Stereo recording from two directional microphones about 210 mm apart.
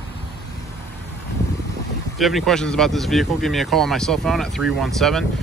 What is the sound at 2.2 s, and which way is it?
Speech, centre (ahead or behind).